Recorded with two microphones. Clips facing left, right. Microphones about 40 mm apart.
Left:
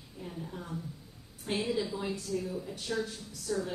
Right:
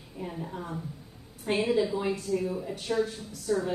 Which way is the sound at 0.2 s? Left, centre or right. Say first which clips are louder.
Right 5 dB; right.